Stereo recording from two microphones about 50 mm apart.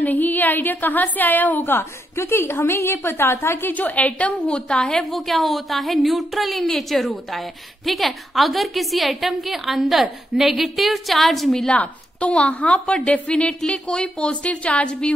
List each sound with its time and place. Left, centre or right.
0.0 s a woman's voice: left
1.6 s a woman's voice: left
3.7 s a woman's voice: left
4.5 s a woman's voice: centre
5.1 s a woman's voice: centre
11.8 s a woman's voice: left